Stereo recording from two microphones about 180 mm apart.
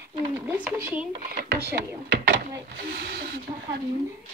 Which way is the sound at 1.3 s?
60° right (ahead or behind).